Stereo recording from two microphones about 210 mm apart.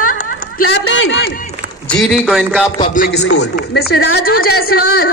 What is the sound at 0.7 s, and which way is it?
Speech, 60° left (ahead or behind).